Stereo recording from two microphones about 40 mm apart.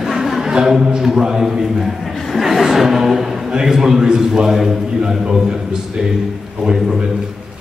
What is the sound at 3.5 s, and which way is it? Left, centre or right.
A man's voice, centre.